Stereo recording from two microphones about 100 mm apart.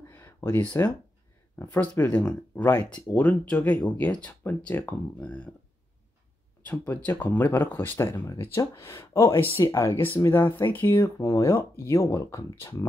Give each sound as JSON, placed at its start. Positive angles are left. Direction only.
{"t": 0.1, "sound": "a sound", "side_deg": 25}
{"t": 1.6, "sound": "speech", "side_deg": 20}
{"t": 6.9, "sound": "speech", "side_deg": 20}